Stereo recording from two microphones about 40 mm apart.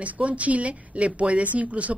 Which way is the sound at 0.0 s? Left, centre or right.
Right.